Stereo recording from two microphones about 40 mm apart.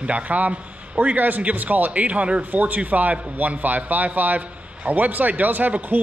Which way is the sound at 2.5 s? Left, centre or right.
Right.